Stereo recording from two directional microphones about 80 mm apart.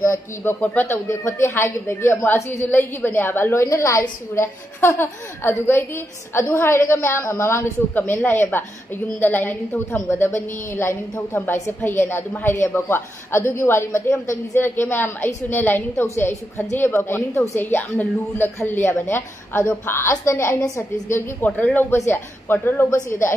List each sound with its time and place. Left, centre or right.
0.0 s a woman's voice: left
8.1 s a woman's voice: left
20.6 s a woman's voice: left
21.5 s speech: centre
21.9 s a woman's voice: left